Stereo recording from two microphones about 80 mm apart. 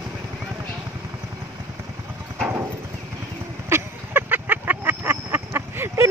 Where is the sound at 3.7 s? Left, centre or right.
Right.